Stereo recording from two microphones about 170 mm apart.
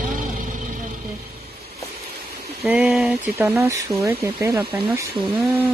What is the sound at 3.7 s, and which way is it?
Speech, 15° right (ahead or behind).